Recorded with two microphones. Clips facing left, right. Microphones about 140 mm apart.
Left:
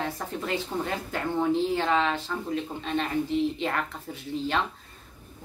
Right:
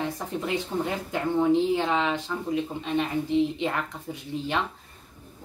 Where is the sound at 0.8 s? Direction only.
15° right (ahead or behind).